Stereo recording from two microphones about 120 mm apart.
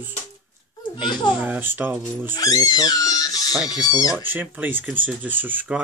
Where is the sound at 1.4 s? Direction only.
15° right (ahead or behind).